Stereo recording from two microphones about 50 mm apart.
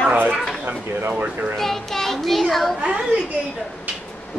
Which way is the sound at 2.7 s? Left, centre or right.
Right.